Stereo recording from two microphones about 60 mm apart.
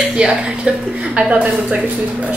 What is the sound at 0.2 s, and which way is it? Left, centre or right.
A woman's voice, centre.